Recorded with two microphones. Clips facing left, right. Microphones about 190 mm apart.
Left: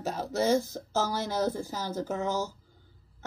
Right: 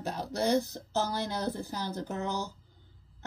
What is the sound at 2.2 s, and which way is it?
Speech, 45° left (ahead or behind).